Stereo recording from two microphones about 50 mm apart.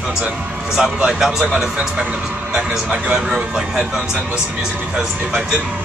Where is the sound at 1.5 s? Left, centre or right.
Right.